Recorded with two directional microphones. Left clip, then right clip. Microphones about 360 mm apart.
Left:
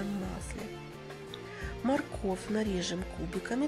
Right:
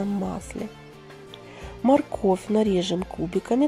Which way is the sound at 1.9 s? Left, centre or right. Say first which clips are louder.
Right 12 dB; centre.